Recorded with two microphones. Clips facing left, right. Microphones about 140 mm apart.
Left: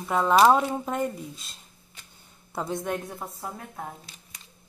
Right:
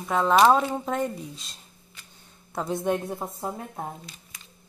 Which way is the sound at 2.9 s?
25° right (ahead or behind).